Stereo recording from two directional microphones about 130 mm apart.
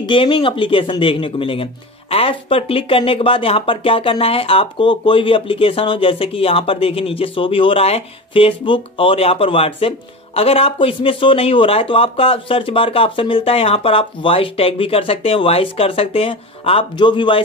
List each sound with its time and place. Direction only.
0.0 s speech: 40° left (ahead or behind)